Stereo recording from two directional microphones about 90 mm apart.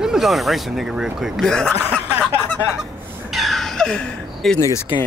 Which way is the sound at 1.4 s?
5° left (ahead or behind).